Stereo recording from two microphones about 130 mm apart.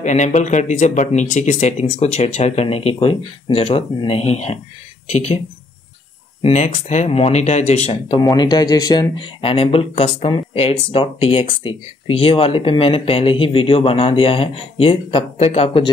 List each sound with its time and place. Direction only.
0.0 s speech: 65° left (ahead or behind)
6.5 s speech: 65° left (ahead or behind)
8.2 s speech: 30° left (ahead or behind); by 15.9 s 45° left (ahead or behind)